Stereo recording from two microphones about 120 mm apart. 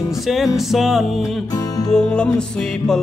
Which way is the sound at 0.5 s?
Centre (ahead or behind).